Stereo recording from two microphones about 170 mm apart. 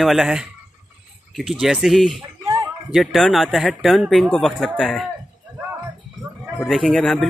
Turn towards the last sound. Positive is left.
turn(degrees=0)  # may be behind; listen again after turning